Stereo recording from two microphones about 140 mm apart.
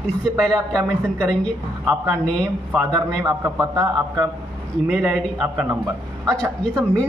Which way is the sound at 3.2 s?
20° right (ahead or behind).